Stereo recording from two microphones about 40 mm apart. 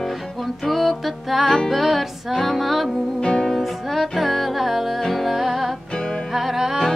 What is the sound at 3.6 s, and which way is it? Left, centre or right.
Music, centre.